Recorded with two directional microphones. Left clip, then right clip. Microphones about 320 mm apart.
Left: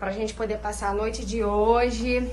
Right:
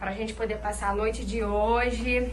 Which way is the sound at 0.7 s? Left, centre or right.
Centre.